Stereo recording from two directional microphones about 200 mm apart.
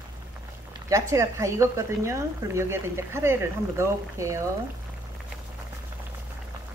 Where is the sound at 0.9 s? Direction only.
15° right (ahead or behind).